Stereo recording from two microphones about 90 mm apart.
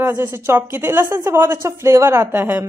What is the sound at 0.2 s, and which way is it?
Speech, 20° right (ahead or behind).